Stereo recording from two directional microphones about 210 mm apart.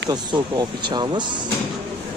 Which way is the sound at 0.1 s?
20° right (ahead or behind).